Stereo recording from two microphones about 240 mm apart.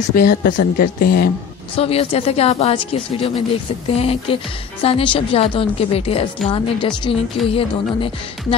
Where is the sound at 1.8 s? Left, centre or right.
Left.